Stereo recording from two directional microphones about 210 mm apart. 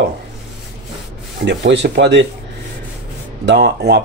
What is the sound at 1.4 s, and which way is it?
Speech, 55° right (ahead or behind).